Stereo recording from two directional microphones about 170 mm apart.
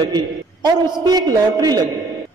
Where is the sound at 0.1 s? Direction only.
25° right (ahead or behind).